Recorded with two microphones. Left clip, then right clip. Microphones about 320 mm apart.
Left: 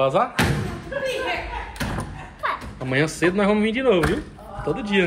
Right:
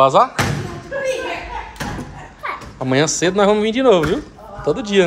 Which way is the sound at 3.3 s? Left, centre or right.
Centre.